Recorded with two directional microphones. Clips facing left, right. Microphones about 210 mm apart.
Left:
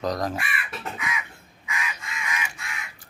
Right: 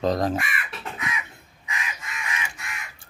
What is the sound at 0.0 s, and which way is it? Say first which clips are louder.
Speech: right 4 dB; 25° right (ahead or behind).